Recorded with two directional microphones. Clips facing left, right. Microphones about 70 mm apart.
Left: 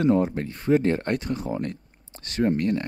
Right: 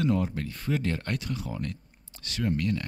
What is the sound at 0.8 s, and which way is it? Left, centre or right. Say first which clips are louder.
Speech: left 7 dB; left.